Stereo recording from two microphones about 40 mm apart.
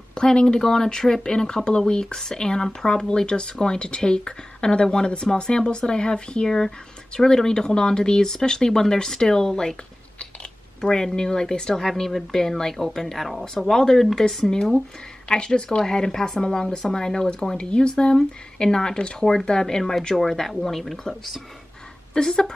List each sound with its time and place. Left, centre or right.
0.1 s speech: left
10.8 s speech: centre
22.1 s speech: centre